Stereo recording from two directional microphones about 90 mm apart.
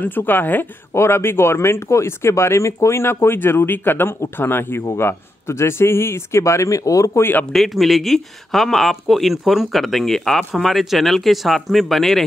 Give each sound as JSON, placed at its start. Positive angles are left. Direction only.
{"t": 0.0, "sound": "speech", "side_deg": 20}
{"t": 7.5, "sound": "speech", "side_deg": 0}